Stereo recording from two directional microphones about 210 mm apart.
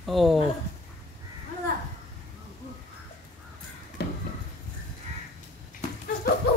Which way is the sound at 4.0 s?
50° left (ahead or behind).